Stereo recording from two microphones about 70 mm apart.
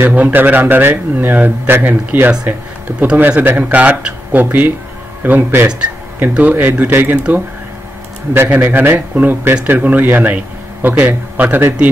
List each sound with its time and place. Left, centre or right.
0.0 s speech: right